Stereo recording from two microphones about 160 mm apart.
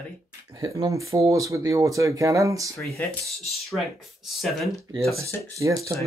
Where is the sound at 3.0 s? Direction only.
10° left (ahead or behind).